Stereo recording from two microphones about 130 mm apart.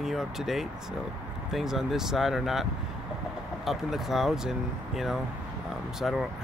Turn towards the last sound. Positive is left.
turn(degrees=0)  # may be behind; listen again after turning